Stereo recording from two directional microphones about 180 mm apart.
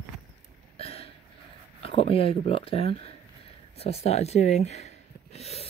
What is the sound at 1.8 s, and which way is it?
Speech, 30° left (ahead or behind).